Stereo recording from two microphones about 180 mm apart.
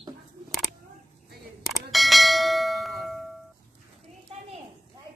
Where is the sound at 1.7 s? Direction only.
Centre (ahead or behind).